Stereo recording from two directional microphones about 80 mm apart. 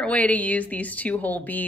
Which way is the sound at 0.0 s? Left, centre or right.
Centre.